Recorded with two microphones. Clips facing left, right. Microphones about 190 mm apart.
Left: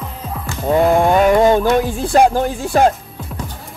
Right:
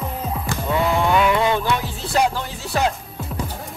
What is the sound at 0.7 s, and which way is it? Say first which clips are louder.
Music: left 7 dB; 50° left (ahead or behind).